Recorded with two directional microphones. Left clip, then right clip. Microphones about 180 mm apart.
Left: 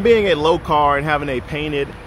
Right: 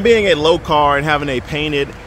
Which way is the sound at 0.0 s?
5° right (ahead or behind).